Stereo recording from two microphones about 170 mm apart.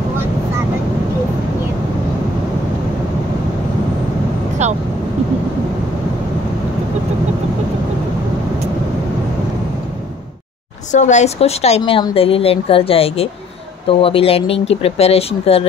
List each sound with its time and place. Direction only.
10.9 s a woman's voice: 45° left (ahead or behind)